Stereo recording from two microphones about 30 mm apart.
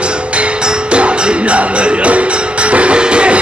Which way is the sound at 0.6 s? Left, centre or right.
Right.